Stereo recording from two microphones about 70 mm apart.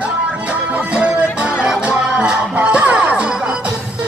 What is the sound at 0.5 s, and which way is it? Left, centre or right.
Music, centre.